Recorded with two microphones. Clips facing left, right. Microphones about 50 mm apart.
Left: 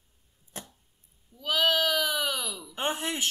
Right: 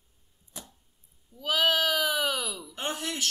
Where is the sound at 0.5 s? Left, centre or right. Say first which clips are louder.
Left 3 dB; left.